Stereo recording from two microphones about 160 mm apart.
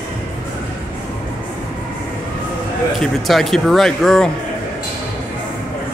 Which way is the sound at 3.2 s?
Centre (ahead or behind).